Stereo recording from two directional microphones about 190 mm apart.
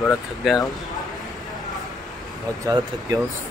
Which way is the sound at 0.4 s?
Centre (ahead or behind).